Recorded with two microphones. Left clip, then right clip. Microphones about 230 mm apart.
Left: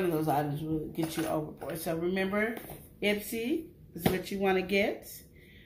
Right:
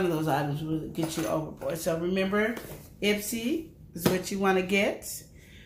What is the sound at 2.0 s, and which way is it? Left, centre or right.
Speech, centre.